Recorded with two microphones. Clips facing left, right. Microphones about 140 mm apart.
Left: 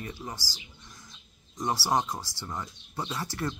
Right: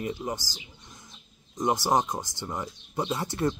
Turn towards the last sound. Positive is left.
turn(degrees=-20)  # may be behind; listen again after turning